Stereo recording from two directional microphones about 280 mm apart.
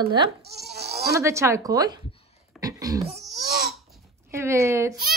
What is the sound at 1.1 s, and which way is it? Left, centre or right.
Speech, centre.